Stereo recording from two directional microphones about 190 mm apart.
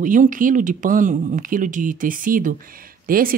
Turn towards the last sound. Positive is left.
turn(degrees=-50)  # may be behind; listen again after turning